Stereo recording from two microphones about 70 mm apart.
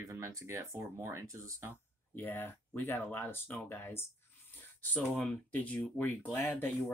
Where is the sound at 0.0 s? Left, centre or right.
Right.